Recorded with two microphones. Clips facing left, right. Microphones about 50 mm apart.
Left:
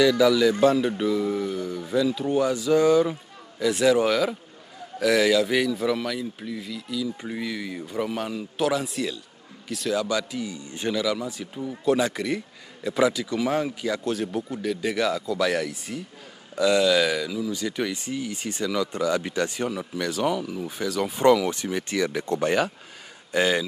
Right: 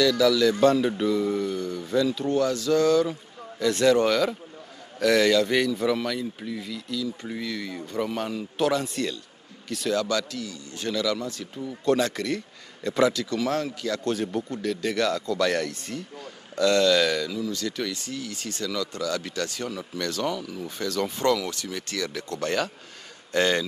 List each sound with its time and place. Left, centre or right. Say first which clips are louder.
0.0 s a man's voice: left 2 dB; centre
7.0 s speech: left 3 dB; centre